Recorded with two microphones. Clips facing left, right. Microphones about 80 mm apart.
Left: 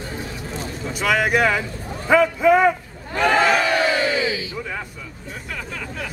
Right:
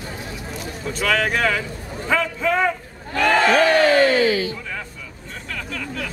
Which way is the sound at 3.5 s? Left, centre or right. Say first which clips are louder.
Right 4 dB; right.